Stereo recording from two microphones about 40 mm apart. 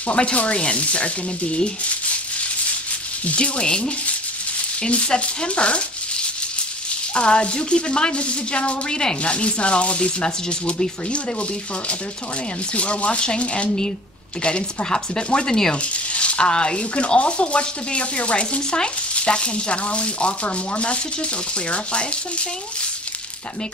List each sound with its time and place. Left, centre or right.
0.1 s speech: left
3.3 s speech: left
12.7 s speech: left; by 15.7 s centre
15.7 s speech: left